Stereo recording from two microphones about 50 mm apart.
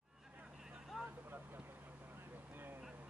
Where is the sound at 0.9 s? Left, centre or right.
Centre.